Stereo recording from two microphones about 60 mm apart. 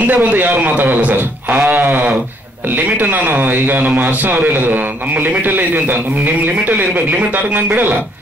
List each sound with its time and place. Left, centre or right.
0.0 s a man's voice: right